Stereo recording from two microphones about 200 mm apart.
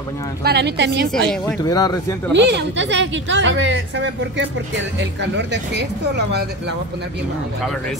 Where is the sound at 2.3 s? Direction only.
60° right (ahead or behind).